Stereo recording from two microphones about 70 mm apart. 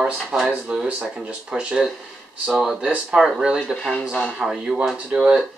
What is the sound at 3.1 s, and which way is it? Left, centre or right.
Speech, centre.